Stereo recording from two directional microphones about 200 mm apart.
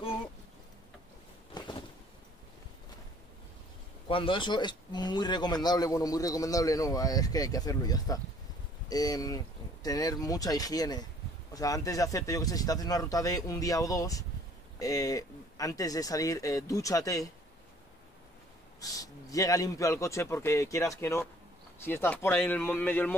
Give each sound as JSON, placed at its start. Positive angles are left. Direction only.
{"t": 1.5, "sound": "a sound", "side_deg": 20}
{"t": 4.1, "sound": "speech", "side_deg": 25}
{"t": 18.8, "sound": "speech", "side_deg": 15}